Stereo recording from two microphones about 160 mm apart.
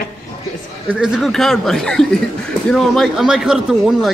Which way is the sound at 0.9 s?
Centre (ahead or behind).